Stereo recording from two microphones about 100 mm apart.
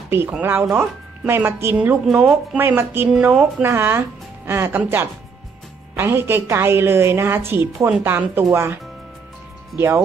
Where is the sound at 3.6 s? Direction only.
25° right (ahead or behind).